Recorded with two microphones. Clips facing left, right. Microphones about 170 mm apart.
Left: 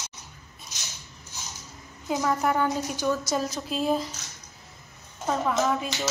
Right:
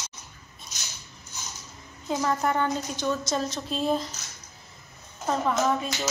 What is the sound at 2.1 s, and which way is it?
A woman's voice, 5° left (ahead or behind).